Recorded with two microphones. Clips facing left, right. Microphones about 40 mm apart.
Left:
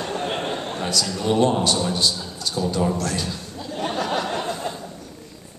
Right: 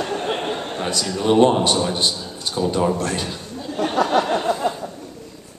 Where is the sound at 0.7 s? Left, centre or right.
Right.